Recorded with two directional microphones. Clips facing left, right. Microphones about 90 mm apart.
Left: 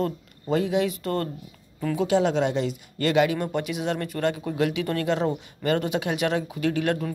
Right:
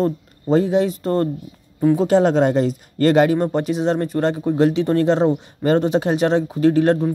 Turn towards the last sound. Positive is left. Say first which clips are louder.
# right 9 dB
turn(degrees=-35)  # may be behind; listen again after turning